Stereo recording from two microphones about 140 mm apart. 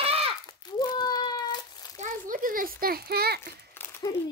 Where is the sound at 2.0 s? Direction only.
70° right (ahead or behind); by 3.3 s 90° right.